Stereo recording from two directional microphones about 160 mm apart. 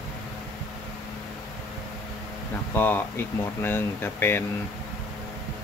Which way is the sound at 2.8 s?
10° left (ahead or behind).